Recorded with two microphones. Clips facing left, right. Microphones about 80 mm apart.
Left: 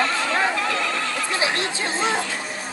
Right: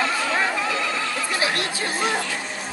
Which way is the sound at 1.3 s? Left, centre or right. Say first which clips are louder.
Left 1 dB; left.